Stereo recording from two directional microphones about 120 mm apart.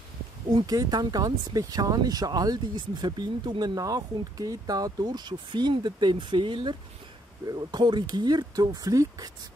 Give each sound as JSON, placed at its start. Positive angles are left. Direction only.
{"t": 0.5, "sound": "speech", "side_deg": -35}